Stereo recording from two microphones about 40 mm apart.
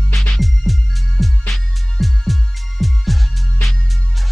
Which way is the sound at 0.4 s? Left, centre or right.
Centre.